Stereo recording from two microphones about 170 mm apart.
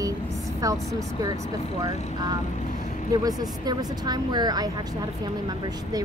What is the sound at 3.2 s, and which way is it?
Speech, 20° right (ahead or behind).